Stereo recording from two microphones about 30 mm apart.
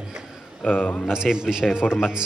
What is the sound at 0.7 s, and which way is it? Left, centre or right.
Speech, left.